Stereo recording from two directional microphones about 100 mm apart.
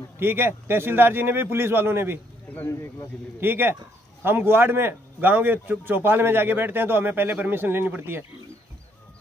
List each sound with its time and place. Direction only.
0.2 s a man's voice: 20° right (ahead or behind)
2.5 s speech: 25° left (ahead or behind)
3.3 s a man's voice: 20° right (ahead or behind)